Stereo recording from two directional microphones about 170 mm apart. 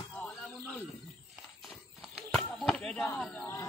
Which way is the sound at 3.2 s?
5° left (ahead or behind).